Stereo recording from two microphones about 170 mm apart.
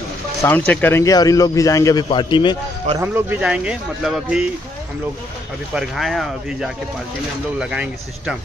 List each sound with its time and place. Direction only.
0.4 s speech: 10° left (ahead or behind); by 2.5 s 25° left (ahead or behind)
3.0 s speech: 10° right (ahead or behind)
5.8 s speech: centre (ahead or behind)